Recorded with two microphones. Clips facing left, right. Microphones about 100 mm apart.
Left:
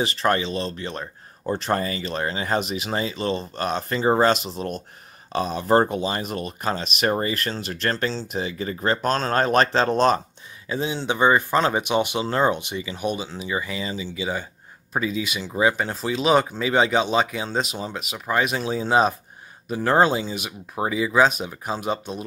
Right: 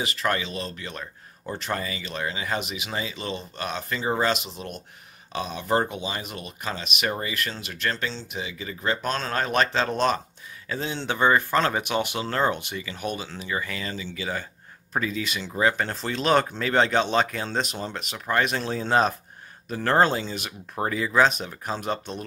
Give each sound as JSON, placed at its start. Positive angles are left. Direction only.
{"t": 0.0, "sound": "speech", "side_deg": 35}
{"t": 10.7, "sound": "speech", "side_deg": 10}